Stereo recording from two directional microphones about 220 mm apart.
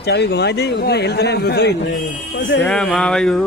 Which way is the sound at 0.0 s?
50° left (ahead or behind).